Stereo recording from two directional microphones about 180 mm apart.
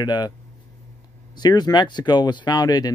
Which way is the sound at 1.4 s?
25° left (ahead or behind).